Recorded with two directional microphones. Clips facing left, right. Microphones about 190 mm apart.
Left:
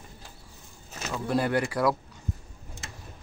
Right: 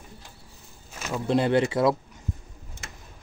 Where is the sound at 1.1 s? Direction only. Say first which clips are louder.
Right 4 dB; 25° right (ahead or behind).